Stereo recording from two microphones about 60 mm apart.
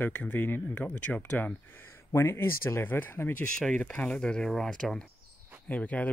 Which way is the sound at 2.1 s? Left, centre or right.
Left.